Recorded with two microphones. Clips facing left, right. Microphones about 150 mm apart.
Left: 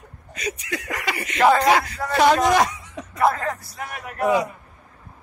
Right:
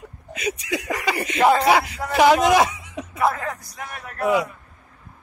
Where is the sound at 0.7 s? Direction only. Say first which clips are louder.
Right 5 dB; 15° right (ahead or behind).